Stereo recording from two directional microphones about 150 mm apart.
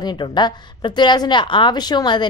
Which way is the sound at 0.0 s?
30° left (ahead or behind).